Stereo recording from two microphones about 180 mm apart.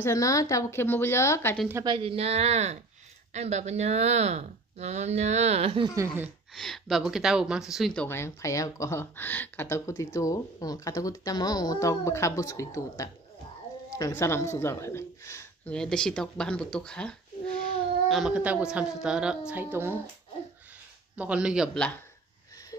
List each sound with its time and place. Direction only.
0.0 s speech: 15° left (ahead or behind)
1.9 s speech: 30° right (ahead or behind)
6.5 s speech: centre (ahead or behind)
15.7 s a man's voice: 5° left (ahead or behind); by 20.0 s 10° right (ahead or behind)
21.2 s a man's voice: 5° right (ahead or behind)